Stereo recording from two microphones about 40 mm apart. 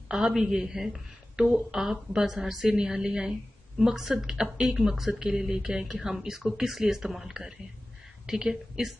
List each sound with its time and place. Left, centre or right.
0.3 s speech: centre